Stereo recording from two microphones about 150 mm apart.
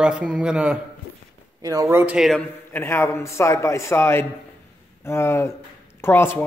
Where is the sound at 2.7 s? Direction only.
15° left (ahead or behind).